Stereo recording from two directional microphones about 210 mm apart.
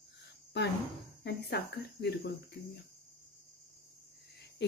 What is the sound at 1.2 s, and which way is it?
Cricket, 50° left (ahead or behind).